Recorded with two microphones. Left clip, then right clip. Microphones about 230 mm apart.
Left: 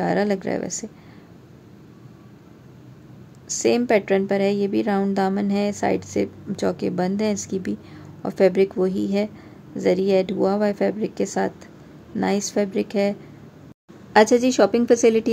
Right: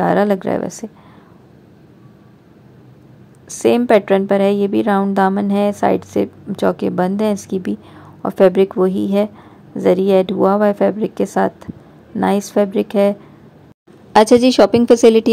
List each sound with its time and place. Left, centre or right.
0.0 s a woman's voice: centre
3.5 s a woman's voice: centre